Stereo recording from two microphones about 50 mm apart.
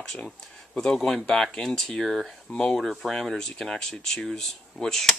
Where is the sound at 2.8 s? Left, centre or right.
Centre.